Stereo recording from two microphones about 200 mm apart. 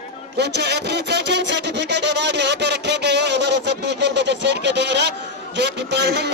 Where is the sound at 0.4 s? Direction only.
55° right (ahead or behind).